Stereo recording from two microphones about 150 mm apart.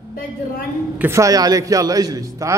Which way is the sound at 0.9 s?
15° right (ahead or behind).